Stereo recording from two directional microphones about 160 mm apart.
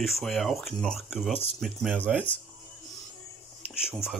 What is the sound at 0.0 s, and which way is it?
Speech, centre (ahead or behind).